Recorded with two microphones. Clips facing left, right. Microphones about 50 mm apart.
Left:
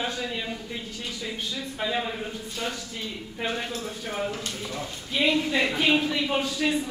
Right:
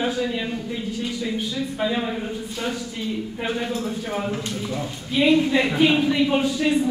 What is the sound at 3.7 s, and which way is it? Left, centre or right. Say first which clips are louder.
A man's voice: right 6 dB; centre.